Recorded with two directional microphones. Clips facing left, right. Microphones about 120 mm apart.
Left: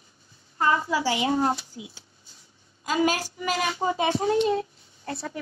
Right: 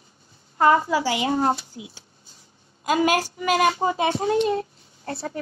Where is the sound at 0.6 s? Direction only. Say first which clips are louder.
Right 5 dB; 45° right (ahead or behind).